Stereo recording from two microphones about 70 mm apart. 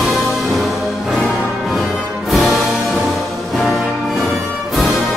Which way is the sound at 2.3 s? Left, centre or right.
Centre.